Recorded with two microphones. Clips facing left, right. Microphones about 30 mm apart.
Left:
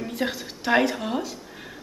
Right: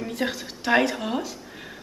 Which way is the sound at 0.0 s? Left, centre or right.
Centre.